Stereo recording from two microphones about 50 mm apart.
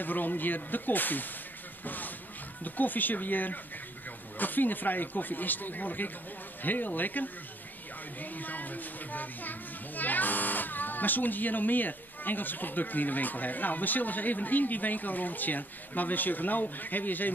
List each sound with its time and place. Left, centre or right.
0.0 s speech: left
1.9 s a sound: left
2.6 s a child's voice: left